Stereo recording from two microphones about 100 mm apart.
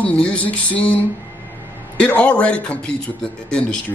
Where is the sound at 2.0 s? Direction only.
15° left (ahead or behind).